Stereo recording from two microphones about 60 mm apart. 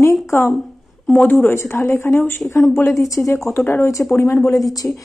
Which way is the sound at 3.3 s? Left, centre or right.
Left.